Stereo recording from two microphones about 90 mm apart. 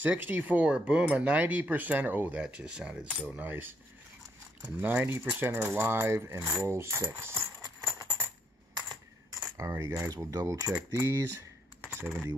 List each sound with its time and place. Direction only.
0.0 s speech: 20° right (ahead or behind)
4.7 s speech: 20° right (ahead or behind)
6.7 s music: 30° right (ahead or behind)
9.6 s speech: 30° right (ahead or behind)
11.8 s typing: 25° right (ahead or behind)